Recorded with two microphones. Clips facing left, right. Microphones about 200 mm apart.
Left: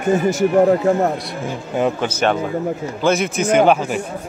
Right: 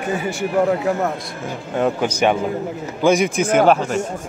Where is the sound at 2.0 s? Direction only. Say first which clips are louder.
Right 1 dB; 10° right (ahead or behind).